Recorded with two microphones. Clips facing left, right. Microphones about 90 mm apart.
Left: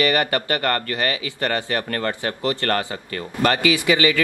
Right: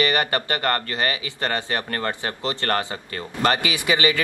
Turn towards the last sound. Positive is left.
turn(degrees=-25)  # may be behind; listen again after turning